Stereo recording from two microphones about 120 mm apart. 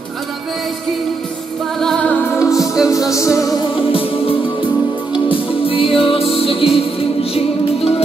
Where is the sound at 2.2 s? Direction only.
25° left (ahead or behind).